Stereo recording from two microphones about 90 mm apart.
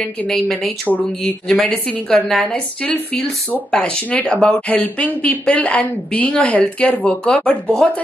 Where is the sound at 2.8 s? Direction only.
15° left (ahead or behind).